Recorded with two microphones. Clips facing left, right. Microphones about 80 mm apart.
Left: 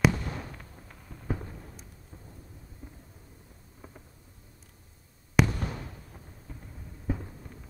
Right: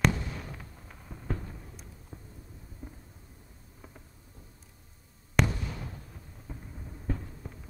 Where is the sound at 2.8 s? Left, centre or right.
Centre.